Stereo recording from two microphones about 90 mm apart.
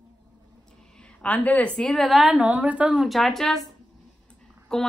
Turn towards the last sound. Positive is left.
turn(degrees=5)  # may be behind; listen again after turning